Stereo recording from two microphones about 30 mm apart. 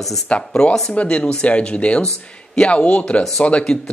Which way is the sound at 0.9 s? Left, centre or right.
Left.